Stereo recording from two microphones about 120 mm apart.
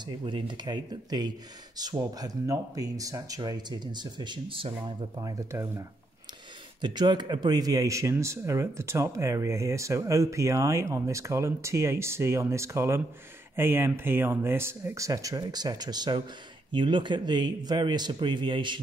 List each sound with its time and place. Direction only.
0.0 s speech: 45° right (ahead or behind)
5.2 s speech: 30° right (ahead or behind)
6.8 s speech: 40° right (ahead or behind)